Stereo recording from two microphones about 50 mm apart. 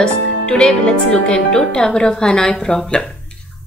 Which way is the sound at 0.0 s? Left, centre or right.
Centre.